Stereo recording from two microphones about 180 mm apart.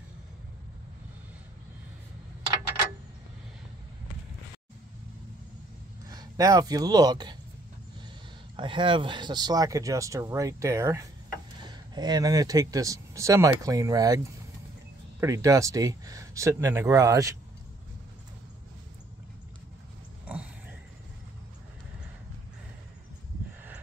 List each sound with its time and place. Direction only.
6.0 s speech: 20° right (ahead or behind)
8.5 s speech: 25° right (ahead or behind)